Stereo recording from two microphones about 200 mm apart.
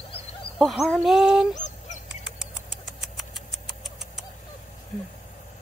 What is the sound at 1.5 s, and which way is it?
Goose, 35° left (ahead or behind).